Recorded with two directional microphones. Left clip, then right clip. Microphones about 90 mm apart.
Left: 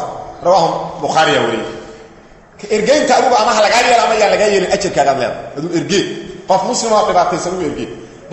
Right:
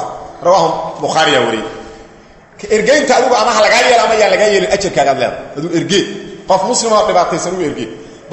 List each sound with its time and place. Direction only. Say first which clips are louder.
0.4 s a man's voice: right 1 dB; 25° right (ahead or behind)
2.7 s a man's voice: right 1 dB; 25° right (ahead or behind)